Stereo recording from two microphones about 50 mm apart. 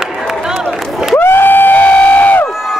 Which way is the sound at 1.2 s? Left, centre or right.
Left.